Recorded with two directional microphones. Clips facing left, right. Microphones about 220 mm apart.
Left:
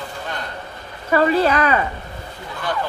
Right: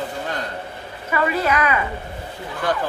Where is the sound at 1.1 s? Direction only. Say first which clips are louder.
Left 5 dB; 35° left (ahead or behind).